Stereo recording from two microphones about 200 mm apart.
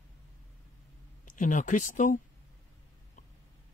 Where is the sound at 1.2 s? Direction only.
40° left (ahead or behind).